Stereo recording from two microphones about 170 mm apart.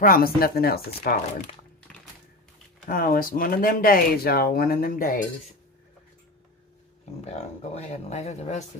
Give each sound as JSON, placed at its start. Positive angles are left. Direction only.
{"t": 0.0, "sound": "speech", "side_deg": 60}
{"t": 2.9, "sound": "speech", "side_deg": 55}
{"t": 7.2, "sound": "speech", "side_deg": 40}